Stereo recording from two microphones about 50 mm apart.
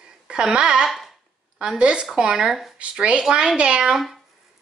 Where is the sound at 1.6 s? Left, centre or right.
Centre.